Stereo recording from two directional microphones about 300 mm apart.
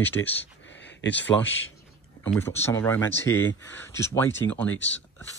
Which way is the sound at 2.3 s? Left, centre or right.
Centre.